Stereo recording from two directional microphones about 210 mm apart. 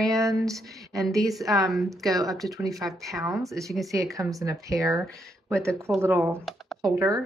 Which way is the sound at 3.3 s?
15° right (ahead or behind).